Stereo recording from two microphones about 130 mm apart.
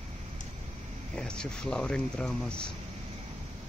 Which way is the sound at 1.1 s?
5° left (ahead or behind).